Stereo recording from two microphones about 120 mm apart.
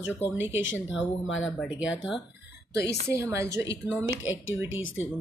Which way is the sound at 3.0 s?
25° right (ahead or behind).